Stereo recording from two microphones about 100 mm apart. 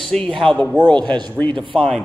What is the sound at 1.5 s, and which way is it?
Speech, 60° right (ahead or behind).